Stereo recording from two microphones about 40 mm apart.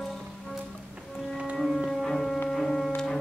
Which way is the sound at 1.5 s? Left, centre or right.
Centre.